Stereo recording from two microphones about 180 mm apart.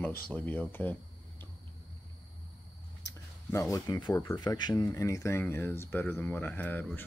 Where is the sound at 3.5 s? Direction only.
15° left (ahead or behind).